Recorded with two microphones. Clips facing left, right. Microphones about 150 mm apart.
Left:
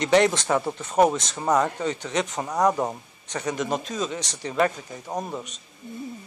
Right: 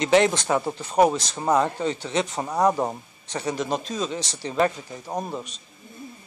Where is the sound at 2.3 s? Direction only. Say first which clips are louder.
Even; 5° right (ahead or behind).